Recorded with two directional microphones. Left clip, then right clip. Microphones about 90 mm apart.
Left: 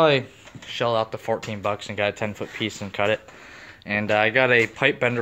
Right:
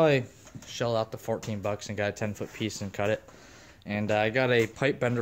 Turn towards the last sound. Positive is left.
turn(degrees=-45)  # may be behind; listen again after turning